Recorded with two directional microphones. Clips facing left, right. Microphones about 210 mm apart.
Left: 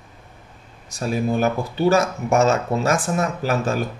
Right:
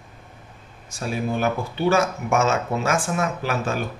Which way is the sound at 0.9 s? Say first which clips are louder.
Left 4 dB; 40° left (ahead or behind).